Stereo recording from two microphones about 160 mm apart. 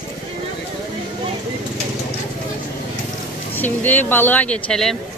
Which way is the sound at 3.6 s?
10° left (ahead or behind).